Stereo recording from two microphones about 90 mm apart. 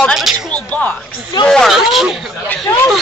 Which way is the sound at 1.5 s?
Centre (ahead or behind).